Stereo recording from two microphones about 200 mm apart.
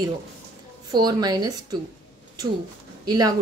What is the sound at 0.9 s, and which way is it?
Speech, 20° right (ahead or behind).